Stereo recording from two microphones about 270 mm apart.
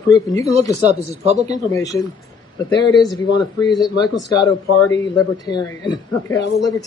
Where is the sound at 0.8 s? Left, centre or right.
Right.